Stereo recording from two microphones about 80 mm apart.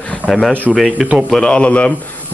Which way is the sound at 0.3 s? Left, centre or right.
Centre.